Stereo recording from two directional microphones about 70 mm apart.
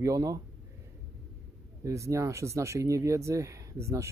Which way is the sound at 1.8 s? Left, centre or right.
Right.